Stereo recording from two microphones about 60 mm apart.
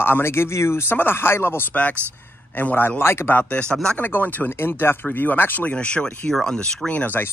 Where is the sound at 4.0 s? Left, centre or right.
Left.